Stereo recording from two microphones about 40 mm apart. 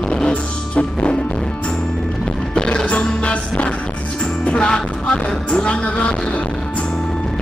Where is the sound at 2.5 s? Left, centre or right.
Left.